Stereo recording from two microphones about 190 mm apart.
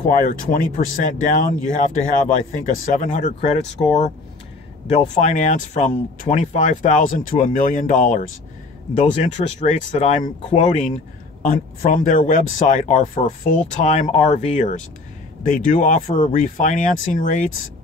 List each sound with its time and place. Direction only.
0.0 s speech: 45° left (ahead or behind)
3.4 s speech: 30° left (ahead or behind)
5.2 s speech: 40° left (ahead or behind)